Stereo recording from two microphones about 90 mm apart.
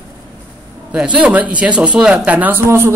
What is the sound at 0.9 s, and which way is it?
A man's voice, 10° right (ahead or behind).